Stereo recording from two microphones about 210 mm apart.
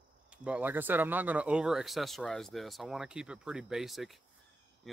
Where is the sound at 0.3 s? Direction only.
5° right (ahead or behind).